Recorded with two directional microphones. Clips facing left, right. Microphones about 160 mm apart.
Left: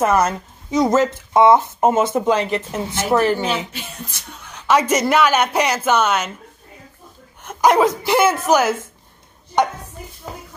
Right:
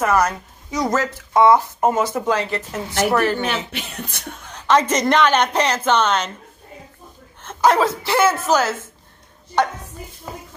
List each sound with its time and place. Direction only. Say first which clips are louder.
0.0 s speech: left 2 dB; 25° left (ahead or behind)
3.7 s music: right 2 dB; 65° right (ahead or behind)
4.6 s a woman's voice: even; 10° left (ahead or behind)
7.4 s a woman's voice: left 2 dB; 15° left (ahead or behind)